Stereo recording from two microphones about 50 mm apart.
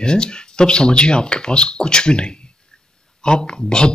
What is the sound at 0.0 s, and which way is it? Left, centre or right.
Speech, centre.